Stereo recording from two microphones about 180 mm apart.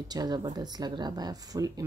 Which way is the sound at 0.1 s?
20° right (ahead or behind).